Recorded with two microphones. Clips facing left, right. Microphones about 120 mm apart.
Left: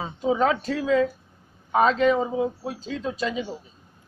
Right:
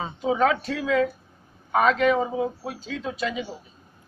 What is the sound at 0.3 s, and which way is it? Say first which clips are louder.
Speech: even; 30° left (ahead or behind).